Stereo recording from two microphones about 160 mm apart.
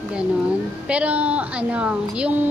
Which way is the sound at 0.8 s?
10° right (ahead or behind).